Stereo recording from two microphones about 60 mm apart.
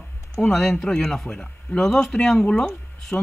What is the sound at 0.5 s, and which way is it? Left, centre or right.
Speech, centre.